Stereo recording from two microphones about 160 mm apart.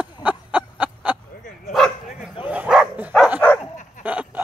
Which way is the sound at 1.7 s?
Centre (ahead or behind).